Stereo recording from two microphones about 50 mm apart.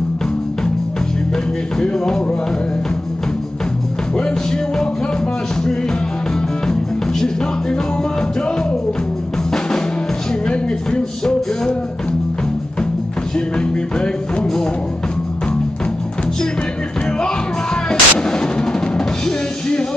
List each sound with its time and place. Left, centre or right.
1.8 s music: centre
10.4 s music: centre
13.6 s music: centre
17.8 s music: centre